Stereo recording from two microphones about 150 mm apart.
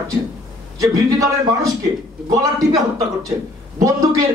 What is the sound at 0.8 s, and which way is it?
A man's voice, 25° right (ahead or behind).